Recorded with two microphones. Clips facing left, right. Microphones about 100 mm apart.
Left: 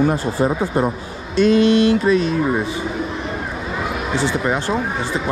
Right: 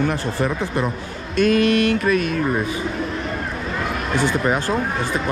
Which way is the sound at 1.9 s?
60° right (ahead or behind).